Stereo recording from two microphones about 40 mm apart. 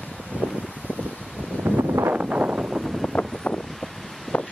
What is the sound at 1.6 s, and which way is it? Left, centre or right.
Wind noise, right.